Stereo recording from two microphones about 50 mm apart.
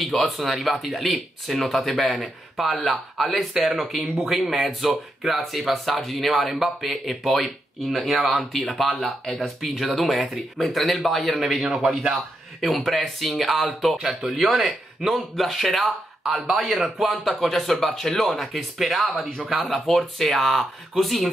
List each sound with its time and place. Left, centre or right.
0.0 s speech: centre
13.9 s speech: centre
14.5 s speech: centre